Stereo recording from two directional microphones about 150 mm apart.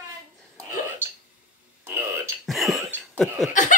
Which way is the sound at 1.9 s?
15° right (ahead or behind).